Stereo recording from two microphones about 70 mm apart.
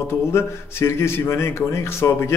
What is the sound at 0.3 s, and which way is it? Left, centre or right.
Speech, left.